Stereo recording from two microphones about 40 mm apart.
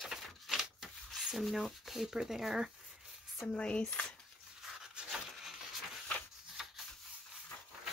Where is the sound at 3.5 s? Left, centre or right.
Left.